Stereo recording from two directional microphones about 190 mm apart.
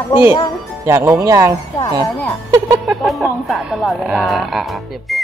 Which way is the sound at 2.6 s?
Centre (ahead or behind).